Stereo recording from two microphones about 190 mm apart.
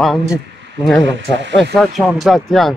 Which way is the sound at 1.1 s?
70° right (ahead or behind).